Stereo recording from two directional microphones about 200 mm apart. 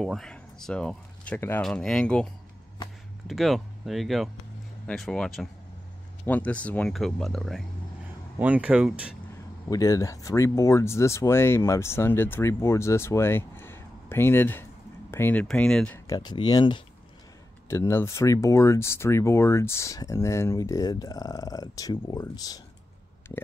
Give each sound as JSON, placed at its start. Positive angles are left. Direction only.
{"t": 0.0, "sound": "speech", "side_deg": 0}
{"t": 3.3, "sound": "speech", "side_deg": 0}
{"t": 9.7, "sound": "speech", "side_deg": 15}
{"t": 16.1, "sound": "speech", "side_deg": 20}